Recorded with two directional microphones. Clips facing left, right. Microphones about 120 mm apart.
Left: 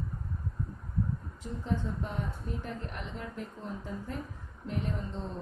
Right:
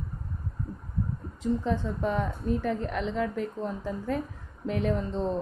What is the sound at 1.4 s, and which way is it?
A woman's voice, 85° right.